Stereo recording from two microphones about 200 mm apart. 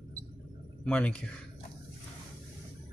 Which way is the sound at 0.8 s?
5° left (ahead or behind).